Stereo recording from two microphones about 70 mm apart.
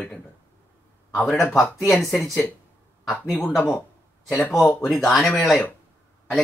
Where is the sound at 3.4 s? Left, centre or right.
Left.